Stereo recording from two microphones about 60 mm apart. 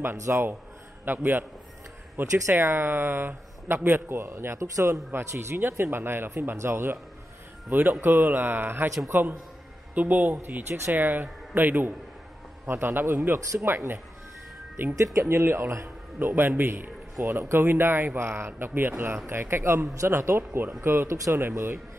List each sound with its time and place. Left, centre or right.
0.2 s a man's voice: right